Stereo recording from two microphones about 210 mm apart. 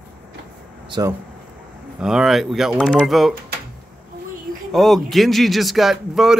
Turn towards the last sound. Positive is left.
turn(degrees=0)  # may be behind; listen again after turning